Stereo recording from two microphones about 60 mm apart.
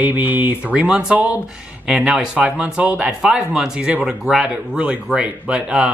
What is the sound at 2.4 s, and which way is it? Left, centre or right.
Speech, right.